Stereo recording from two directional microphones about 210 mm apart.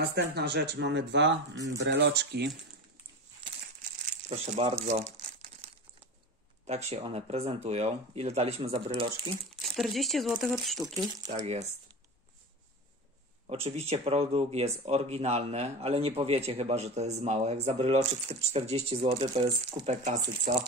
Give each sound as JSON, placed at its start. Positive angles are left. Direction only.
{"t": 0.1, "sound": "speech", "side_deg": -50}
{"t": 4.3, "sound": "speech", "side_deg": -30}
{"t": 4.8, "sound": "crumpling", "side_deg": -30}
{"t": 6.6, "sound": "speech", "side_deg": -30}
{"t": 9.8, "sound": "speech", "side_deg": 0}
{"t": 11.2, "sound": "speech", "side_deg": -30}
{"t": 13.5, "sound": "speech", "side_deg": -30}